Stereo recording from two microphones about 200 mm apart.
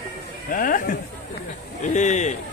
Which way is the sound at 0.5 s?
45° left (ahead or behind).